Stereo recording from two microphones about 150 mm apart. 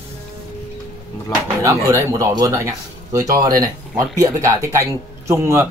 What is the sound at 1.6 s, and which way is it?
Speech, 20° right (ahead or behind).